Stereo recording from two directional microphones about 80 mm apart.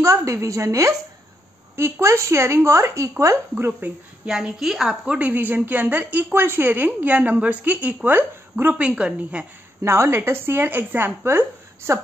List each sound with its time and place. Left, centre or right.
0.0 s a woman's voice: right
3.5 s a woman's voice: right
4.3 s a woman's voice: centre; by 8.8 s right
8.8 s a woman's voice: centre
9.8 s a woman's voice: right